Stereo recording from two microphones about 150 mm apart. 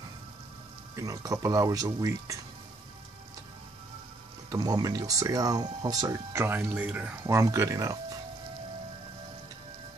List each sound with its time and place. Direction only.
0.9 s speech: 20° right (ahead or behind)
4.5 s speech: 25° right (ahead or behind)